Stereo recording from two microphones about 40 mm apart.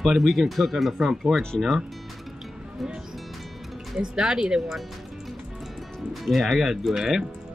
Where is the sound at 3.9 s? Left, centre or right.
Centre.